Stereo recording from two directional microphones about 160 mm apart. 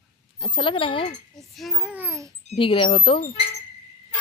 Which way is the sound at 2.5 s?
35° left (ahead or behind).